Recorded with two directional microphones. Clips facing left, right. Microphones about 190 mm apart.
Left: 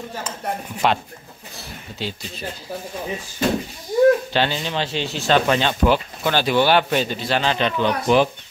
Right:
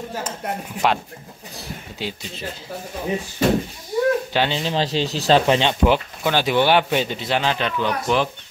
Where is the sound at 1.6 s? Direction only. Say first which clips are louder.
Even; 15° right (ahead or behind).